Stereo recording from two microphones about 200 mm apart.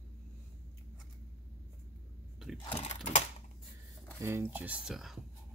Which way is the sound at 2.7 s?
30° left (ahead or behind).